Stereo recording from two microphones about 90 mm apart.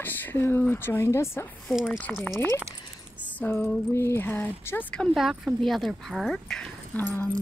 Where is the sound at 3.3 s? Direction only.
20° left (ahead or behind).